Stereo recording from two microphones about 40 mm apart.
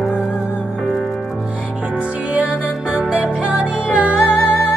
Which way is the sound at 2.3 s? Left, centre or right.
Right.